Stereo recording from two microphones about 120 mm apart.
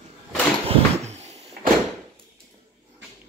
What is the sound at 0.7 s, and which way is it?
Cupboard open or close, 65° right (ahead or behind).